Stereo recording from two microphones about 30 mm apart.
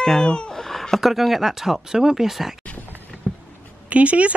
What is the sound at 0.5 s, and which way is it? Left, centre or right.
Chuckle, centre.